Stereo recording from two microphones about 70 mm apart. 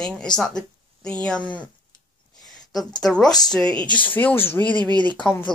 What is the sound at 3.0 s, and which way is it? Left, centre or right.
Speech, centre.